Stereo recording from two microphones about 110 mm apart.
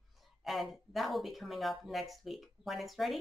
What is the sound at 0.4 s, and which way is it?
Speech, centre (ahead or behind).